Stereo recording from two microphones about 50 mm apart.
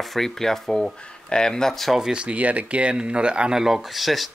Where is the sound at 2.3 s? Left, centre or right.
Right.